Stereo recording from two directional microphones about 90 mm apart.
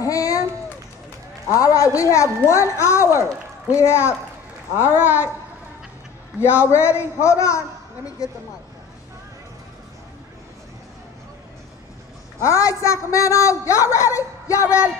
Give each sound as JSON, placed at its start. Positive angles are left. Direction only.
{"t": 0.0, "sound": "run", "side_deg": 40}
{"t": 1.5, "sound": "a man's voice", "side_deg": 40}
{"t": 6.4, "sound": "a man's voice", "side_deg": 30}
{"t": 12.4, "sound": "a man's voice", "side_deg": 35}